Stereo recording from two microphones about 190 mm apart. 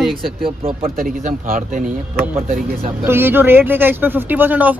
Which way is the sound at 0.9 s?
45° right (ahead or behind).